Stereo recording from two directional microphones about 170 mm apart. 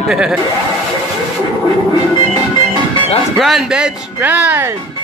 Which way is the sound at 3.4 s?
Centre (ahead or behind).